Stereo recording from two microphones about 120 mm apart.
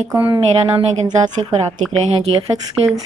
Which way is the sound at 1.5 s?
55° right (ahead or behind).